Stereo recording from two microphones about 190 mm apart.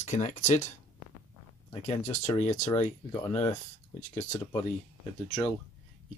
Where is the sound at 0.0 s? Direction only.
40° left (ahead or behind).